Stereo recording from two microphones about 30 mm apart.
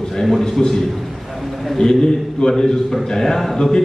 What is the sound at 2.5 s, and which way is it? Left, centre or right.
A man's voice, centre.